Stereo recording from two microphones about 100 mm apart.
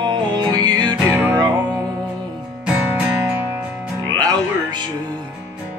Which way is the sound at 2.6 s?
10° right (ahead or behind).